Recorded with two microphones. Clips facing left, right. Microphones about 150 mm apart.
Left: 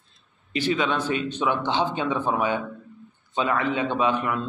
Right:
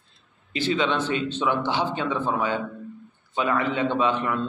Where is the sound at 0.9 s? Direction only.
10° left (ahead or behind).